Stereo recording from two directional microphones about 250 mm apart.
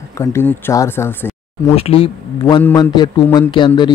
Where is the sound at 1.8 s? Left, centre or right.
Left.